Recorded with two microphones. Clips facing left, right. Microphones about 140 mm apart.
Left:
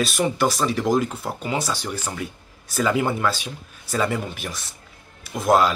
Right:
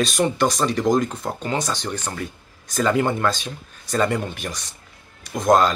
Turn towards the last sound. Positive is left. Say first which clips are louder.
# right 1 dB
turn(degrees=5)  # may be behind; listen again after turning